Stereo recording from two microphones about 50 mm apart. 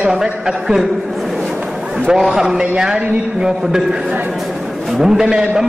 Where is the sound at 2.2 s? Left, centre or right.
Centre.